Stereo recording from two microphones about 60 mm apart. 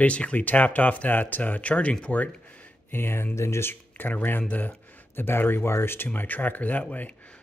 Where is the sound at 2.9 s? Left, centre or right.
Left.